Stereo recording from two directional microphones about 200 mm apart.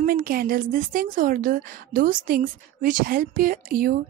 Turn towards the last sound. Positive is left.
turn(degrees=-45)  # may be behind; listen again after turning